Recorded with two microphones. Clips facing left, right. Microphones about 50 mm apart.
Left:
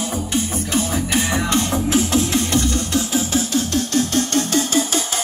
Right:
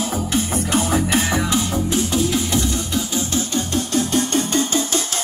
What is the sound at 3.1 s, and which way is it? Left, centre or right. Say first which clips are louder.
Music: left 3 dB; centre.